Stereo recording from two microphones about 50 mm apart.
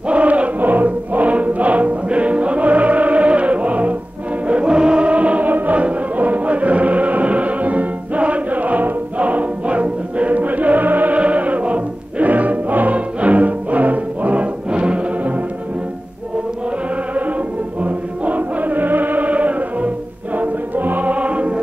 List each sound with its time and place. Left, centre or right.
0.1 s music: right
17.8 s music: right